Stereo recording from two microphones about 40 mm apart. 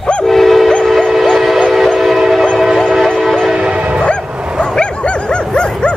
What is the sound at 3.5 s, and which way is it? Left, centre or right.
Train horn, right.